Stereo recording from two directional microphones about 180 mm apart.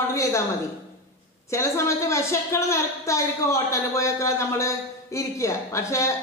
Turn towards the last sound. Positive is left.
turn(degrees=15)  # may be behind; listen again after turning